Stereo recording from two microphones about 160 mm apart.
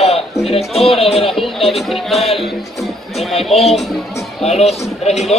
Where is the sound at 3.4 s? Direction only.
40° left (ahead or behind).